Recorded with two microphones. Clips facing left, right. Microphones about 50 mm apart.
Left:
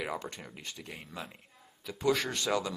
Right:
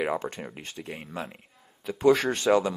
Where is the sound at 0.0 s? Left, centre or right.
Right.